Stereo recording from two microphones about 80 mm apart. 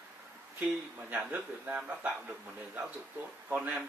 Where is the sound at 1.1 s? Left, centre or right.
Right.